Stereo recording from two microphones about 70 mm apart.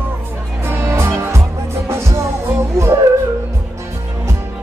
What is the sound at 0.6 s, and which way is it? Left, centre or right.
Music, right.